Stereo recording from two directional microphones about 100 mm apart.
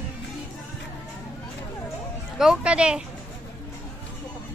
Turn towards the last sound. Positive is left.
turn(degrees=-10)  # may be behind; listen again after turning